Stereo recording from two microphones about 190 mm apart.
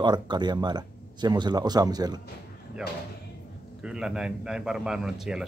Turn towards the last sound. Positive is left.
turn(degrees=-5)  # may be behind; listen again after turning